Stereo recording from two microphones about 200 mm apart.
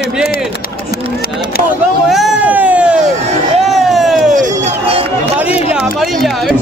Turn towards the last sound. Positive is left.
turn(degrees=0)  # may be behind; listen again after turning